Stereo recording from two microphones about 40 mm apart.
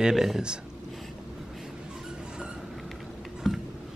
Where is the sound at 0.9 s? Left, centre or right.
Centre.